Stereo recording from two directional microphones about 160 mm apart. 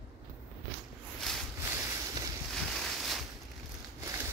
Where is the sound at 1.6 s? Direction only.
15° right (ahead or behind).